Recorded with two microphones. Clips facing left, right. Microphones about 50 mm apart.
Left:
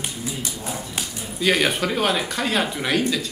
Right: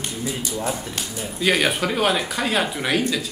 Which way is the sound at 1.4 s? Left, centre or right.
Centre.